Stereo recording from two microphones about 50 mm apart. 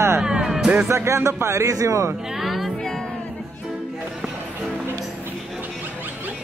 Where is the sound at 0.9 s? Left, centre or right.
Right.